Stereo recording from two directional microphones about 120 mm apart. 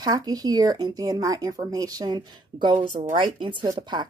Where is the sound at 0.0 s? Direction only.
35° right (ahead or behind).